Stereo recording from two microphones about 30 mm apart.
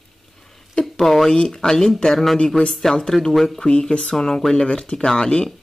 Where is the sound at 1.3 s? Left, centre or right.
Left.